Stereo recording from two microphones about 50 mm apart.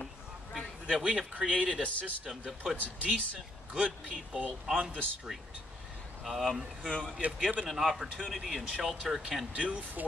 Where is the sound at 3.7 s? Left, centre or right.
Right.